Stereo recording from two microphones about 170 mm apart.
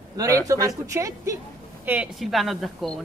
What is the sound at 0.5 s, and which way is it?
Speech, 20° right (ahead or behind).